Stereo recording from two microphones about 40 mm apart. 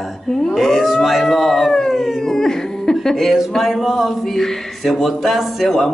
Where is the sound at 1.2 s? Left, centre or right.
Centre.